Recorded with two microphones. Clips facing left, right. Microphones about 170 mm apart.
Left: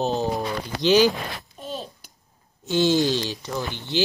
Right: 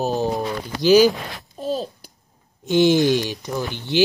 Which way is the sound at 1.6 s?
40° right (ahead or behind).